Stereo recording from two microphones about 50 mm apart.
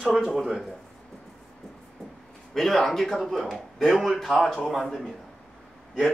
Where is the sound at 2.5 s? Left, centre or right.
Centre.